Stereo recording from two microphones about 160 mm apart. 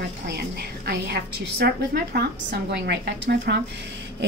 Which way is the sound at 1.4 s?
80° right.